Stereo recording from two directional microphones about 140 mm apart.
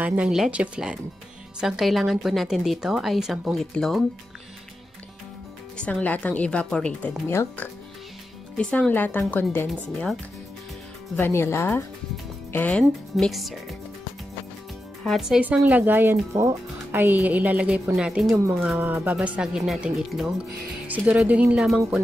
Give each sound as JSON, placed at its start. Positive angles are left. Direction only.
{"t": 0.0, "sound": "speech", "side_deg": -10}
{"t": 5.8, "sound": "speech", "side_deg": 10}
{"t": 7.2, "sound": "speech", "side_deg": 15}
{"t": 9.7, "sound": "speech", "side_deg": 0}
{"t": 11.1, "sound": "speech", "side_deg": 15}
{"t": 15.0, "sound": "speech", "side_deg": -5}
{"t": 18.3, "sound": "speech", "side_deg": -20}
{"t": 18.6, "sound": "speech", "side_deg": -10}
{"t": 20.8, "sound": "speech", "side_deg": -10}